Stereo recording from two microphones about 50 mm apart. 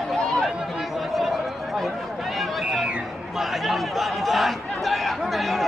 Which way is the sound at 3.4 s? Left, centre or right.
Centre.